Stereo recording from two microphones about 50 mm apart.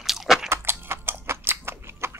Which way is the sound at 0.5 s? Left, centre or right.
Right.